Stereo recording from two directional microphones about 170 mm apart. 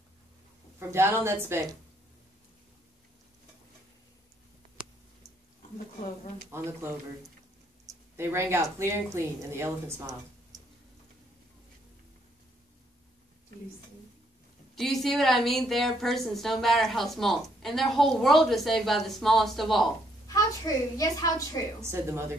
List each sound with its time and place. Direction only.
0.7 s a woman's voice: 15° right (ahead or behind)
6.5 s a woman's voice: 15° right (ahead or behind)
14.8 s a woman's voice: centre (ahead or behind)
20.2 s a woman's voice: 20° left (ahead or behind)